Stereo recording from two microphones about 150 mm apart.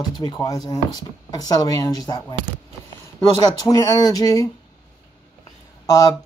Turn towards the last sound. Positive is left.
turn(degrees=25)  # may be behind; listen again after turning